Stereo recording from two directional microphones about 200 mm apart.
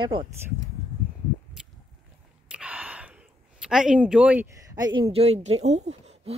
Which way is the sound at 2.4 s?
5° right (ahead or behind).